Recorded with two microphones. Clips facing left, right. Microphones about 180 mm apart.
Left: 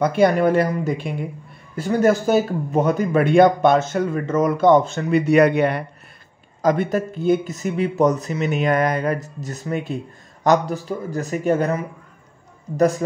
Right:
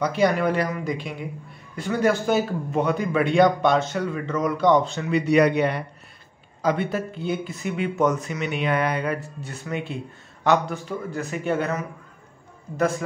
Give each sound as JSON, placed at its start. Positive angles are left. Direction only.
{"t": 0.0, "sound": "a man's voice", "side_deg": 55}